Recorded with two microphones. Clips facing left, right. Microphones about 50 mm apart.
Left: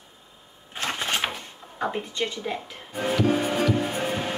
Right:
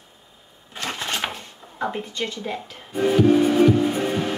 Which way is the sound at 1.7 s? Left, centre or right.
Centre.